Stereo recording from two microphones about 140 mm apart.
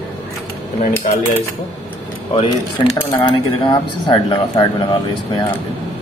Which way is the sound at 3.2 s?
30° left (ahead or behind).